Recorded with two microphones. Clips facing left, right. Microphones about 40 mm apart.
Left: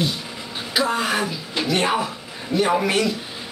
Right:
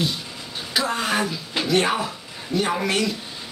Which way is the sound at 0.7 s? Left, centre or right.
Centre.